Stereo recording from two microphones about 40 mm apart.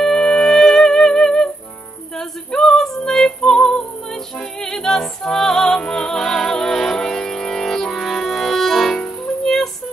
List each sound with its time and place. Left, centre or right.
0.0 s music: centre
3.3 s music: centre
8.9 s music: centre